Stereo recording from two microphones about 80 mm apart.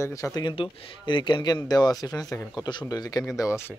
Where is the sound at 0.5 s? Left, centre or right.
Left.